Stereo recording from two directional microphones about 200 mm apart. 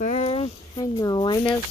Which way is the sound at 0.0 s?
35° left (ahead or behind).